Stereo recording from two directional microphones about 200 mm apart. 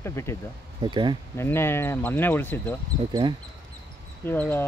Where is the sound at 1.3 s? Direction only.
10° left (ahead or behind).